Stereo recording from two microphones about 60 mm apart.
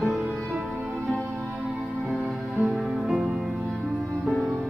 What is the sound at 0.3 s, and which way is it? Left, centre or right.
Music, centre.